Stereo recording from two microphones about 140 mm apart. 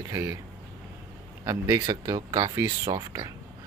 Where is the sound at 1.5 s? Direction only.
25° right (ahead or behind).